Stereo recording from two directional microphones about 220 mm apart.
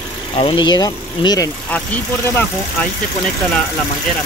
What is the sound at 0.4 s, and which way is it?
Speech, 20° left (ahead or behind).